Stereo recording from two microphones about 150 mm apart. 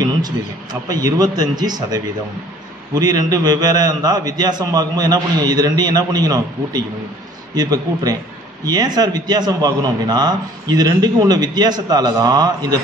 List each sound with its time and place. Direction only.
0.8 s a man's voice: 25° right (ahead or behind)